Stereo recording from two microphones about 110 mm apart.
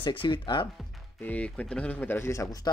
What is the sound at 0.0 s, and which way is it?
Speech, 50° left (ahead or behind).